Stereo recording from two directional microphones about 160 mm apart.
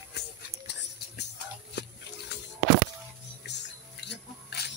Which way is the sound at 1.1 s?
90° left.